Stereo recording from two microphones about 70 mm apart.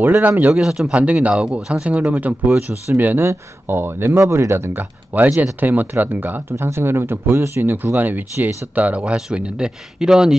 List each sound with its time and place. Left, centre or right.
0.0 s speech: right
0.6 s speech: centre
0.9 s speech: centre
3.3 s speech: right
5.1 s speech: right
6.5 s speech: right; by 10.3 s centre